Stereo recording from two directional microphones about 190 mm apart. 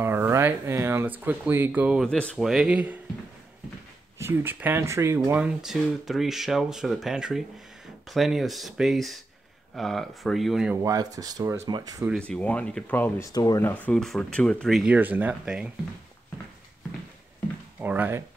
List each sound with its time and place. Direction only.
0.0 s speech: 15° right (ahead or behind)
2.0 s speech: 5° left (ahead or behind)
4.2 s speech: 10° right (ahead or behind)
10.8 s speech: 15° right (ahead or behind)
12.1 s speech: 5° left (ahead or behind)
13.8 s speech: 5° left (ahead or behind)
17.7 s a sound: 10° right (ahead or behind)